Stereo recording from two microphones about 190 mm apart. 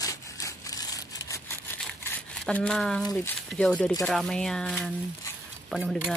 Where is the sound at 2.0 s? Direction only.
5° left (ahead or behind).